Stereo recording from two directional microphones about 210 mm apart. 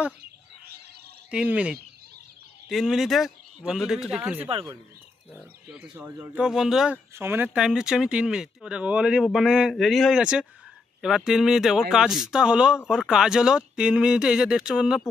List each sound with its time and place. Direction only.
1.3 s speech: 5° right (ahead or behind)
4.4 s speech: 30° right (ahead or behind)
5.4 s speech: 5° right (ahead or behind)